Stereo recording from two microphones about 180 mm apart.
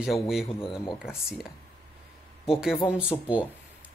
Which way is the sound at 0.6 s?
30° left (ahead or behind).